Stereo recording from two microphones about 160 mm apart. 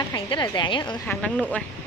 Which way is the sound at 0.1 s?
30° left (ahead or behind).